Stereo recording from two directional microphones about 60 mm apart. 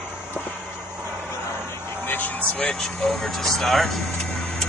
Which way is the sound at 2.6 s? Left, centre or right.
Centre.